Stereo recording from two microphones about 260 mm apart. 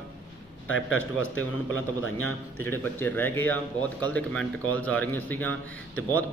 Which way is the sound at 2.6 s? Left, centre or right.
Centre.